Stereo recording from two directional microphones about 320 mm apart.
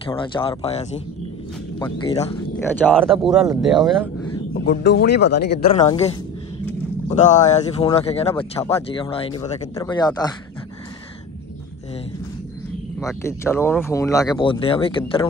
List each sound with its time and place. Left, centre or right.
0.1 s speech: centre
2.6 s speech: centre
4.6 s speech: left
5.8 s speech: centre
7.2 s speech: left
13.0 s speech: centre